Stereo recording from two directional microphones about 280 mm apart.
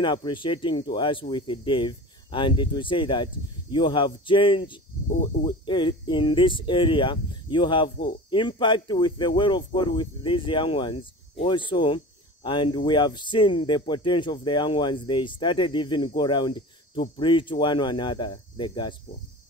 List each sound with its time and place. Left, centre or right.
0.0 s speech: centre